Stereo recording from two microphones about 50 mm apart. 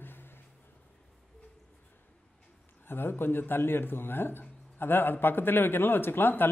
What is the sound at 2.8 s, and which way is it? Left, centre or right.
Speech, left.